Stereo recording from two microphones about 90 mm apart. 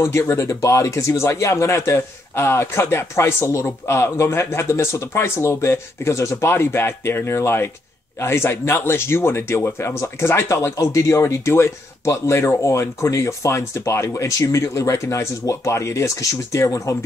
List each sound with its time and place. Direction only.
0.0 s speech: 30° left (ahead or behind)